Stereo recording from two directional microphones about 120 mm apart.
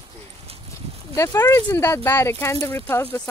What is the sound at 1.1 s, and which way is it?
Speech, 25° left (ahead or behind).